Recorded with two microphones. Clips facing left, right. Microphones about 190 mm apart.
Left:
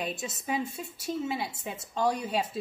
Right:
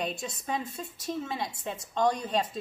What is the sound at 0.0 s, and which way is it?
Speech, centre (ahead or behind).